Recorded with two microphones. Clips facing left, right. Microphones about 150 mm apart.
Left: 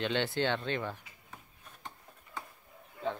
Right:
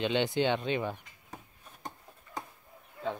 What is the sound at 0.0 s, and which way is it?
Speech, 15° right (ahead or behind).